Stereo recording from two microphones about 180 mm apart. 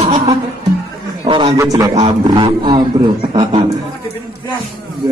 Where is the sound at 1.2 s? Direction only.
25° right (ahead or behind).